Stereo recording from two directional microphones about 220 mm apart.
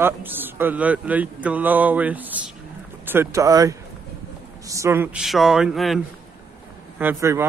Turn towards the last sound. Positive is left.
turn(degrees=-10)  # may be behind; listen again after turning